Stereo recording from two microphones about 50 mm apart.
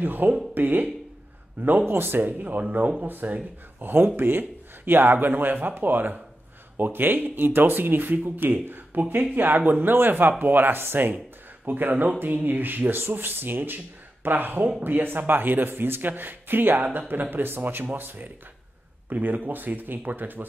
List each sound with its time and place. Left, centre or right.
0.0 s speech: right
1.9 s speech: right